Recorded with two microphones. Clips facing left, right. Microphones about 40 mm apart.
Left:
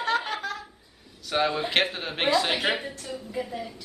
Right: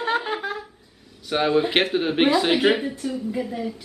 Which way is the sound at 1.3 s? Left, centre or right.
Centre.